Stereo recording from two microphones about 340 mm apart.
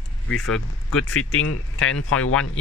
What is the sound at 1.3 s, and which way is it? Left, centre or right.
Speech, left.